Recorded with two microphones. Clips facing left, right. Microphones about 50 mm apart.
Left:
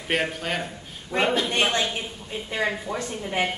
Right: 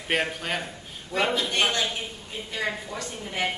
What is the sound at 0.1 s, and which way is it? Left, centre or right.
Speech, centre.